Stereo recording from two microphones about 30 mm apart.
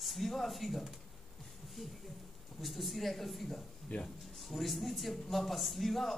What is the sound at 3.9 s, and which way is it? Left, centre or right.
Speech, left.